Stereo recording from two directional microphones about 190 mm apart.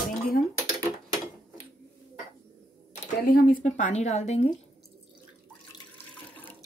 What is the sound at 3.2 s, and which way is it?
A woman's voice, 50° left (ahead or behind).